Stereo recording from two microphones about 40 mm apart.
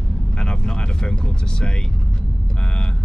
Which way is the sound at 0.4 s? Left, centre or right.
Left.